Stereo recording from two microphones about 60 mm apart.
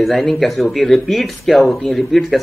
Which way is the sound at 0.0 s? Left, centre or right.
Centre.